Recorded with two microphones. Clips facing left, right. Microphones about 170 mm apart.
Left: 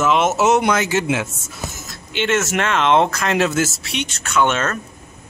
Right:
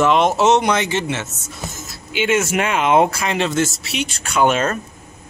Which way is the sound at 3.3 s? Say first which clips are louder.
Left 1 dB; 5° left (ahead or behind).